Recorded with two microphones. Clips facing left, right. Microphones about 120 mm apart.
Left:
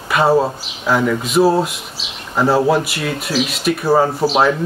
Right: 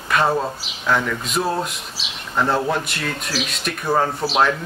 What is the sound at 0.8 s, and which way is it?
Speech, 5° left (ahead or behind).